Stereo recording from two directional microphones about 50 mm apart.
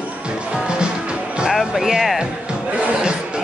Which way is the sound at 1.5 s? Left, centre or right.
Centre.